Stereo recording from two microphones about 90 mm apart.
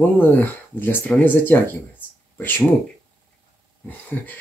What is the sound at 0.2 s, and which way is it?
Speech, 25° left (ahead or behind).